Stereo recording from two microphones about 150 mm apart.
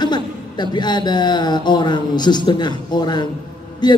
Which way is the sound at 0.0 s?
30° left (ahead or behind).